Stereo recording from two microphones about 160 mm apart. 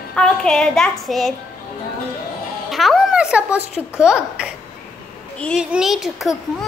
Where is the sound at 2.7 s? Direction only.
Centre (ahead or behind).